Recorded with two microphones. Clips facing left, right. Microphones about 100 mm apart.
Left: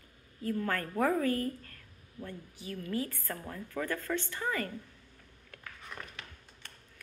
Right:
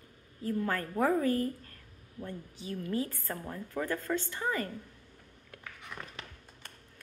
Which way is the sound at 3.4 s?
15° right (ahead or behind).